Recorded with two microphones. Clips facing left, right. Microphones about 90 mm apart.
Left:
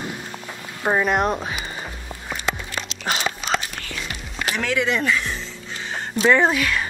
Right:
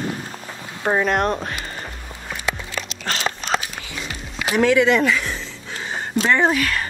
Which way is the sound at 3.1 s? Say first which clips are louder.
Even; 5° left (ahead or behind).